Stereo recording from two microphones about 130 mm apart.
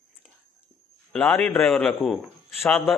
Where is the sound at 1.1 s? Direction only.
10° left (ahead or behind).